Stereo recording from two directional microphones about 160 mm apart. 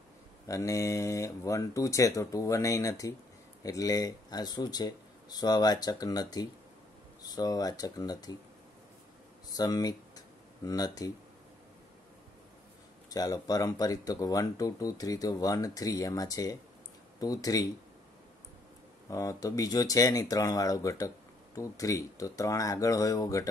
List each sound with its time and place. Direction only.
0.5 s speech: 20° left (ahead or behind)
9.6 s speech: 25° left (ahead or behind)
13.1 s speech: 25° left (ahead or behind)
19.0 s speech: 20° left (ahead or behind)